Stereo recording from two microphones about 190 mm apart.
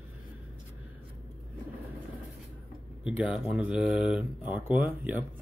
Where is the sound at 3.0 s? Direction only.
5° right (ahead or behind).